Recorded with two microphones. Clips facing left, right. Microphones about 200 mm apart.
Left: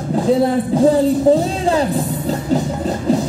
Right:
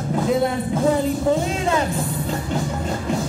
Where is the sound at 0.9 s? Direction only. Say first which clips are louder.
Left 6 dB; 35° left (ahead or behind).